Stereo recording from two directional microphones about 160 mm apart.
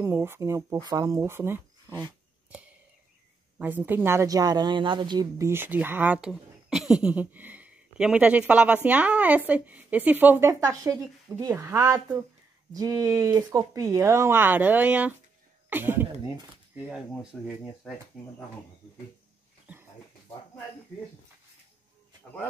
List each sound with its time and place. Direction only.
0.0 s a woman's voice: 15° right (ahead or behind)
3.5 s a woman's voice: 10° right (ahead or behind)
17.1 s speech: centre (ahead or behind)